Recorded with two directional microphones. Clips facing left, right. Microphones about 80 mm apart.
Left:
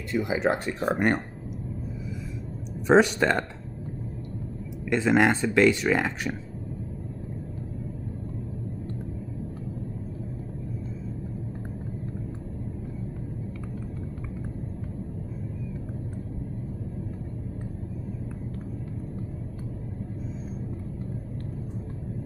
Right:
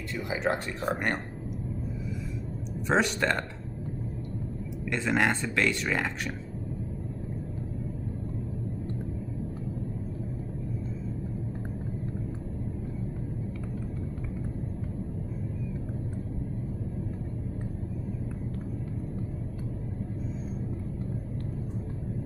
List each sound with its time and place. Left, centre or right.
0.0 s speech: centre
2.9 s speech: centre
4.8 s speech: centre